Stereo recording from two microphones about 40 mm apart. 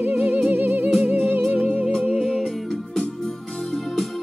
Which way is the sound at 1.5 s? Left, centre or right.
Right.